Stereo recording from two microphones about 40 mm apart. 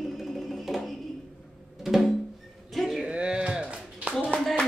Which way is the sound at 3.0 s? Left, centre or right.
Centre.